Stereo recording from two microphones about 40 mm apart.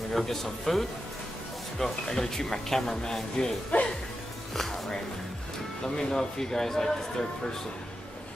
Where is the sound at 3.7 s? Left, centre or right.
Left.